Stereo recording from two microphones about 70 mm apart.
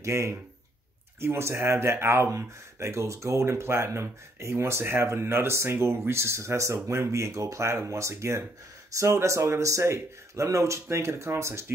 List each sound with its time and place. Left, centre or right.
0.0 s speech: right